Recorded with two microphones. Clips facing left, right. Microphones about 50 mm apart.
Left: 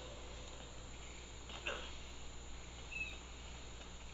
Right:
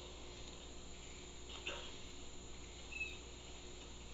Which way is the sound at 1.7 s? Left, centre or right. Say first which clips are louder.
Left 4 dB; left.